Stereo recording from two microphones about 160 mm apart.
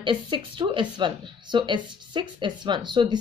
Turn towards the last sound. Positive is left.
turn(degrees=-25)  # may be behind; listen again after turning